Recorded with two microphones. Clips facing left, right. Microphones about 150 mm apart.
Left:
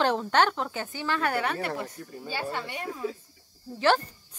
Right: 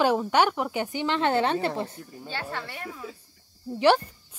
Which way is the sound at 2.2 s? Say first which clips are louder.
Left 2 dB; 10° left (ahead or behind).